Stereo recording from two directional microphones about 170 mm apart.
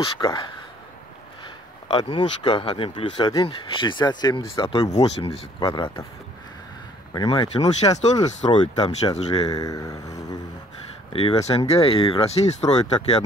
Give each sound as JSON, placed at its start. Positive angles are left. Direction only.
{"t": 0.0, "sound": "speech", "side_deg": 25}
{"t": 1.9, "sound": "speech", "side_deg": 25}
{"t": 4.9, "sound": "speech", "side_deg": 35}
{"t": 7.2, "sound": "speech", "side_deg": 25}
{"t": 9.5, "sound": "speech", "side_deg": 20}
{"t": 11.1, "sound": "speech", "side_deg": 35}